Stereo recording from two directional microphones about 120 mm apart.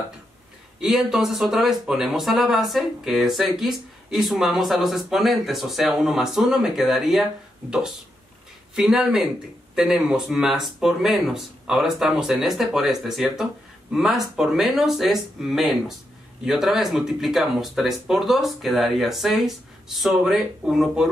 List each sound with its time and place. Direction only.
0.7 s speech: 5° right (ahead or behind)
8.7 s speech: 5° right (ahead or behind)